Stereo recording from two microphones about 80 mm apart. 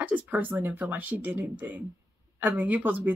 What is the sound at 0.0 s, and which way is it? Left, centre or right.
Speech, right.